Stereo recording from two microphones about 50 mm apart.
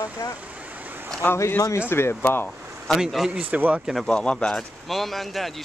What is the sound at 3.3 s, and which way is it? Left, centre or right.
Speech, right.